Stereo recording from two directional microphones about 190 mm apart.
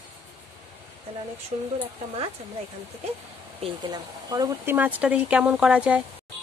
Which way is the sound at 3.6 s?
20° right (ahead or behind).